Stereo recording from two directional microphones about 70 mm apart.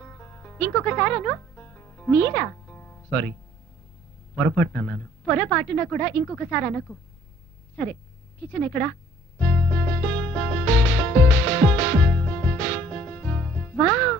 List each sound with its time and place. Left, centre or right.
0.0 s music: left
4.4 s a woman's voice: centre
9.4 s music: centre